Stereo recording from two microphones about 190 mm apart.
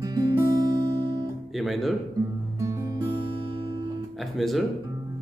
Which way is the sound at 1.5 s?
Centre (ahead or behind).